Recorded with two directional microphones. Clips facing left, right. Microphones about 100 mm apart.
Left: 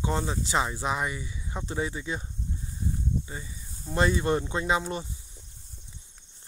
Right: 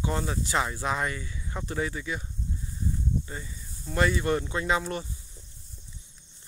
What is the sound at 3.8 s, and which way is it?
Speech, 25° left (ahead or behind).